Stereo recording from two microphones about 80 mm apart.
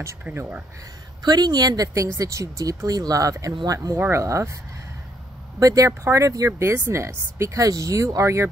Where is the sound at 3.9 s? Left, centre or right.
Right.